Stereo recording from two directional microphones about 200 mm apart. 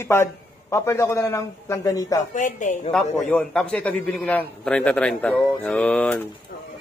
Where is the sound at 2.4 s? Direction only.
40° left (ahead or behind).